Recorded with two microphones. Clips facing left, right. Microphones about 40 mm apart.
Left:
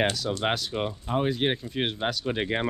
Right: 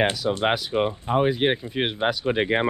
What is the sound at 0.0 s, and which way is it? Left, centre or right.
Speech, centre.